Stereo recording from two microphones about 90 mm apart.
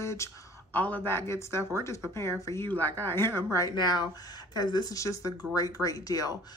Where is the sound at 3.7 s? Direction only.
50° left (ahead or behind).